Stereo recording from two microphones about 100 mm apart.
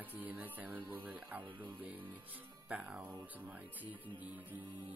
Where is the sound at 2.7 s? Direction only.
10° right (ahead or behind).